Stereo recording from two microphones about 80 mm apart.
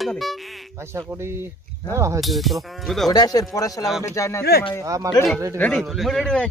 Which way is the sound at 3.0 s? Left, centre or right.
Left.